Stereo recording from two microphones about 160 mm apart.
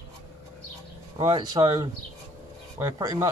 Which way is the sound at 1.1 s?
30° right (ahead or behind).